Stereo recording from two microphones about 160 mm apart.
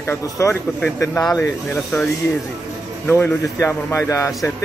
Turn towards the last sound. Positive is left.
turn(degrees=20)  # may be behind; listen again after turning